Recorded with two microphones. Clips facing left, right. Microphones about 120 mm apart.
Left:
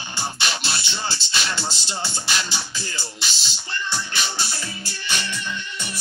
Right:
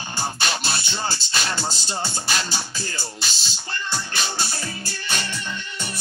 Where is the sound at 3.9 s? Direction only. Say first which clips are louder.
Right 2 dB; 50° right (ahead or behind).